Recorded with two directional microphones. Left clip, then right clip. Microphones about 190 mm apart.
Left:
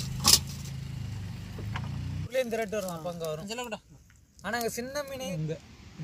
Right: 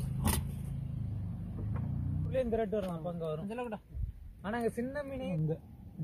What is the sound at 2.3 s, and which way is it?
Speech, 20° left (ahead or behind).